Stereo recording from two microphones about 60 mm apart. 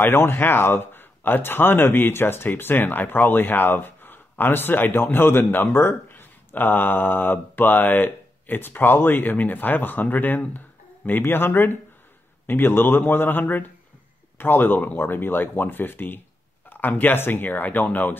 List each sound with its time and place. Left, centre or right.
0.0 s speech: left